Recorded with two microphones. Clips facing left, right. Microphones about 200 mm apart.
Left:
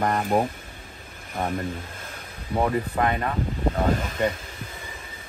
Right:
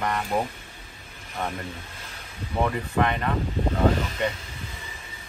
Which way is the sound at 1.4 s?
40° left (ahead or behind).